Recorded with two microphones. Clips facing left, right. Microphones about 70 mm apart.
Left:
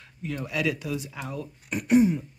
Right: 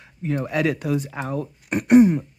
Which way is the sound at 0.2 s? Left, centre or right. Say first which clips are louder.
Right 6 dB; right.